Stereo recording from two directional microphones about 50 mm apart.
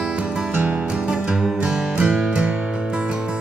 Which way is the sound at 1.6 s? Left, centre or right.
Centre.